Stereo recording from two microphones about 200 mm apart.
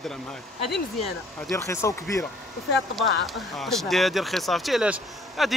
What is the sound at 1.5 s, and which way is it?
Speech, 15° left (ahead or behind).